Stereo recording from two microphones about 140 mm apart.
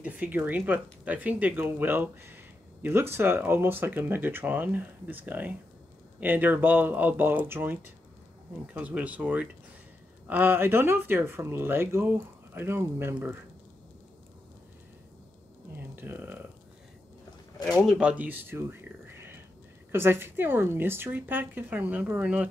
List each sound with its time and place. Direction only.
0.0 s speech: 10° right (ahead or behind)
16.0 s speech: 15° right (ahead or behind)
17.8 s speech: 5° right (ahead or behind)